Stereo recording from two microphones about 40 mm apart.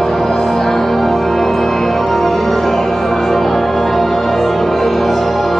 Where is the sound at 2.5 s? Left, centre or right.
Left.